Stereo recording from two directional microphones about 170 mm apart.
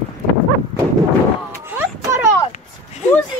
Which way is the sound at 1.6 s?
15° right (ahead or behind).